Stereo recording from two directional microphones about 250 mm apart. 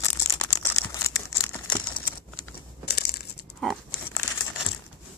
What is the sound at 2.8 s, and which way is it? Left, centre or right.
Crumpling, left.